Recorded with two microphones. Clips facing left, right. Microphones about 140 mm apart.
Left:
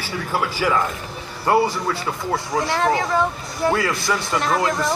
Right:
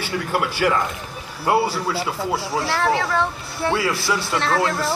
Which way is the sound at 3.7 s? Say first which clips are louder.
Left 1 dB; 5° right (ahead or behind).